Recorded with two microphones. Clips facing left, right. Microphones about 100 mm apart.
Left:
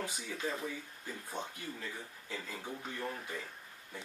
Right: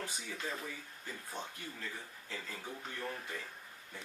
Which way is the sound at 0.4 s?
15° left (ahead or behind).